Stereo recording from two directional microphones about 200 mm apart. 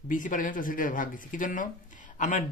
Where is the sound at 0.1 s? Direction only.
40° left (ahead or behind).